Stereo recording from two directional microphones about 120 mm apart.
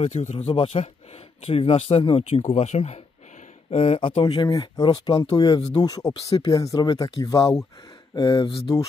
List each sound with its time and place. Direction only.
0.0 s speech: 65° left (ahead or behind)
4.2 s speech: 40° left (ahead or behind)